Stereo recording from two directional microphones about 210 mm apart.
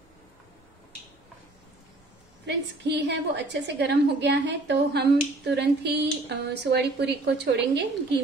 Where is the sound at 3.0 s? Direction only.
55° right (ahead or behind).